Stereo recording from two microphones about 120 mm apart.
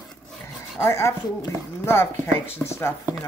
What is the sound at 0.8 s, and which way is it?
Speech, 20° left (ahead or behind).